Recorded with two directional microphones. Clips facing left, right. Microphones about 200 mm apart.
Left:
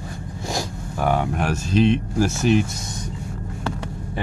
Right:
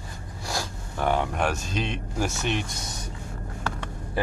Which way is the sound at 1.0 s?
5° left (ahead or behind).